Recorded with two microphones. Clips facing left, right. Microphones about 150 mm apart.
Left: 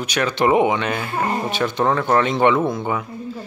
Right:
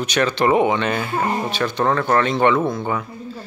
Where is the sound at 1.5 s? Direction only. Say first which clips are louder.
Even; 20° left (ahead or behind).